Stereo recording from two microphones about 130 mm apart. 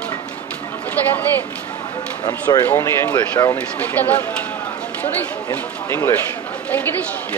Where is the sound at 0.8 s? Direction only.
15° left (ahead or behind).